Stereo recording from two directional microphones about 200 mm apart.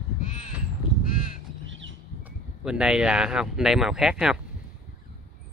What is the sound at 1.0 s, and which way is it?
Crow, 45° left (ahead or behind).